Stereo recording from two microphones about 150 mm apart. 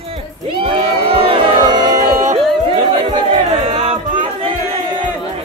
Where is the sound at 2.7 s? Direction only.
35° right (ahead or behind).